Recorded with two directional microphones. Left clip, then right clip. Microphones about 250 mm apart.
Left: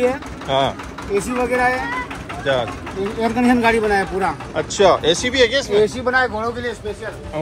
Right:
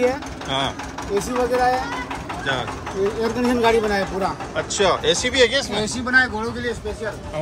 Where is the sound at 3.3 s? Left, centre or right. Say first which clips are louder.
Left 4 dB; centre.